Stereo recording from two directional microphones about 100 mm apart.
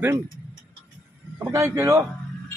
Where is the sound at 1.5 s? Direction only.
30° right (ahead or behind).